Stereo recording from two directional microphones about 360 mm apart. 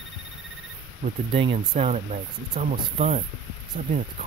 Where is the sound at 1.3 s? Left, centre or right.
Centre.